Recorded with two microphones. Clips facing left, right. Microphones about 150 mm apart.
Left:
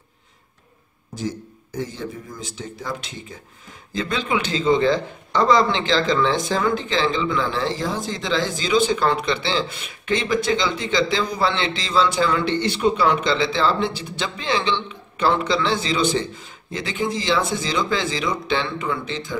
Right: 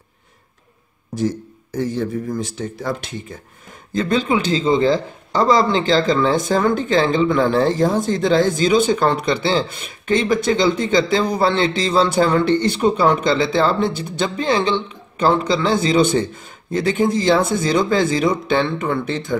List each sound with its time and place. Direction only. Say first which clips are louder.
1.1 s speech: right 7 dB; 60° right (ahead or behind)
3.9 s speech: right 5 dB; 40° right (ahead or behind)